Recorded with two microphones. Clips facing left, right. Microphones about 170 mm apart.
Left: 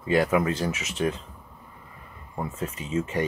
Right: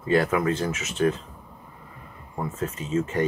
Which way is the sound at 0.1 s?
15° left (ahead or behind).